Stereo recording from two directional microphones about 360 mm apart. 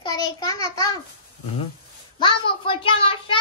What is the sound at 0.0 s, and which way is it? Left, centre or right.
Speech, centre.